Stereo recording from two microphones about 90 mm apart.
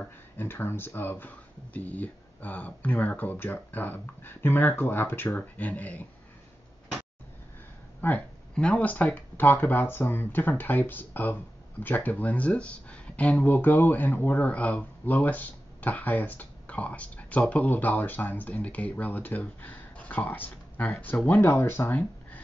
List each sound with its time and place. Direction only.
0.0 s speech: 25° left (ahead or behind)
8.0 s speech: 15° left (ahead or behind)